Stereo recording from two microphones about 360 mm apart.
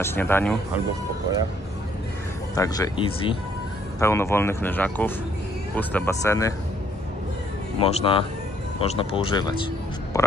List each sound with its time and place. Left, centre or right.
0.0 s speech: centre
2.5 s speech: centre
7.8 s speech: centre